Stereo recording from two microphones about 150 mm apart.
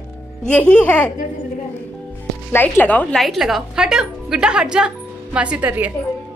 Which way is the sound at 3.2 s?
Centre (ahead or behind).